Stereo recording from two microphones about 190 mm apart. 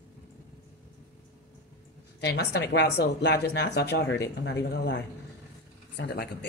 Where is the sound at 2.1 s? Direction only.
60° left (ahead or behind).